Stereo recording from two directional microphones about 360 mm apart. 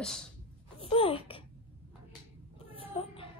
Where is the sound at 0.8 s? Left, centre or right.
Centre.